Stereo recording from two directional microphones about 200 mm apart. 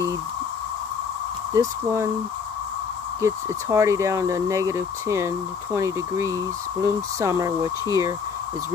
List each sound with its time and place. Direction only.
1.5 s speech: 15° right (ahead or behind)
3.2 s speech: 15° right (ahead or behind)